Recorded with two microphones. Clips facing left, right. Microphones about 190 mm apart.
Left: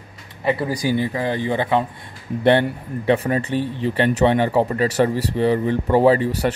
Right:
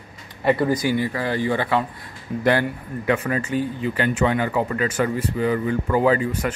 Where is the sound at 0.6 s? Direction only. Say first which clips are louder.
Right 1 dB; 10° left (ahead or behind).